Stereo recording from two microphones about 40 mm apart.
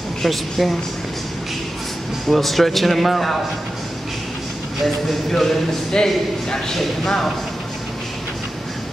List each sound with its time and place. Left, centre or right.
0.2 s a man's voice: centre
2.2 s a man's voice: centre
4.8 s a man's voice: centre
6.0 s speech: centre